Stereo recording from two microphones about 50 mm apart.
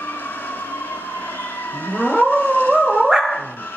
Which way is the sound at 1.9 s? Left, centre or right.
Left.